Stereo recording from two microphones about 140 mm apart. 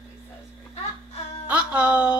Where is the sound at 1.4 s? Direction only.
10° right (ahead or behind).